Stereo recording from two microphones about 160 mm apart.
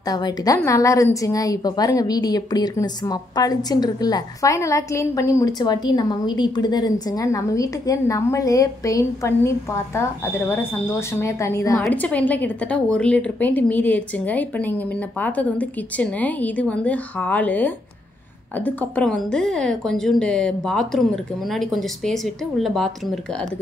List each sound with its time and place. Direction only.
0.0 s a woman's voice: 25° left (ahead or behind)
11.7 s a woman's voice: 5° left (ahead or behind)